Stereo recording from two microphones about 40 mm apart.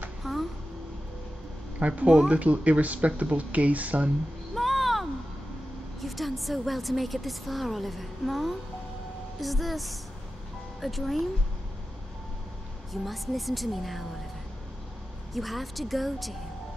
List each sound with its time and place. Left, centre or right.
0.2 s music: centre
1.8 s speech: right
4.6 s a sound: centre
5.9 s a woman's voice: centre
12.9 s a woman's voice: centre
15.3 s a woman's voice: centre